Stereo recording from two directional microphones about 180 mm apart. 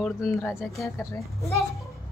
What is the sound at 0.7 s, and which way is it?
Speech, 15° left (ahead or behind).